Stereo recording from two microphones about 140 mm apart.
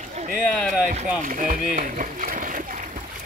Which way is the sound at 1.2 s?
75° right (ahead or behind).